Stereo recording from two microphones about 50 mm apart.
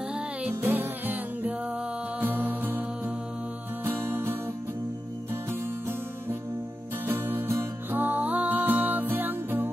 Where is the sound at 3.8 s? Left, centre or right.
Right.